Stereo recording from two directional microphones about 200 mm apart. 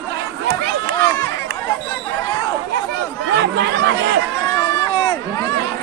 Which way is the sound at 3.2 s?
60° right (ahead or behind).